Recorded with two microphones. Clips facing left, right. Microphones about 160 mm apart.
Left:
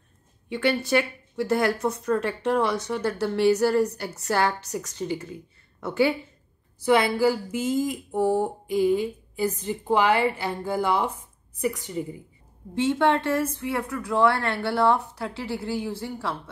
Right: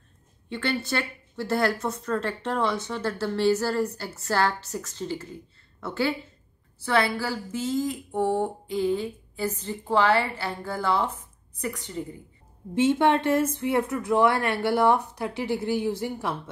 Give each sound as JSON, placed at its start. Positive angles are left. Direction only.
{"t": 0.5, "sound": "speech", "side_deg": 15}
{"t": 12.7, "sound": "speech", "side_deg": -20}